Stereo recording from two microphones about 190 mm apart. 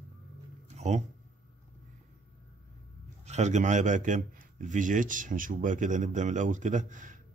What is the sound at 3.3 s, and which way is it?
A man's voice, 40° right (ahead or behind).